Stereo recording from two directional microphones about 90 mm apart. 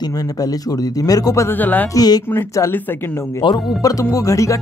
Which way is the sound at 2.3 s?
30° left (ahead or behind).